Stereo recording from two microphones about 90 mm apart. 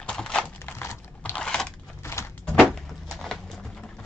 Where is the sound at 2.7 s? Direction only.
Centre (ahead or behind).